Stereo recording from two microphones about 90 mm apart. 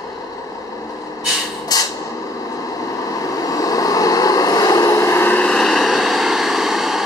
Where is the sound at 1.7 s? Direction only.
45° left (ahead or behind).